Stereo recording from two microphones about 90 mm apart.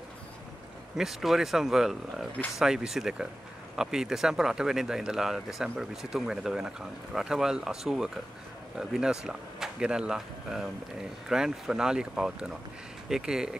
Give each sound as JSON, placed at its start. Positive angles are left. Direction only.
{"t": 0.9, "sound": "speech", "side_deg": -5}